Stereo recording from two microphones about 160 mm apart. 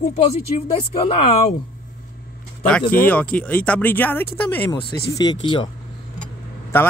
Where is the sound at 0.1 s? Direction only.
40° left (ahead or behind).